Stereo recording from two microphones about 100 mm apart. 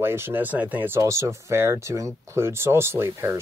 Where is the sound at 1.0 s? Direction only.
30° right (ahead or behind).